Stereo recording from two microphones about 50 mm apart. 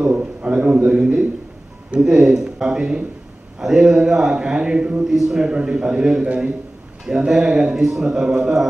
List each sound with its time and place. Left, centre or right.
0.0 s a sound: right
2.0 s a man's voice: centre
5.0 s a man's voice: centre
5.5 s a man's voice: right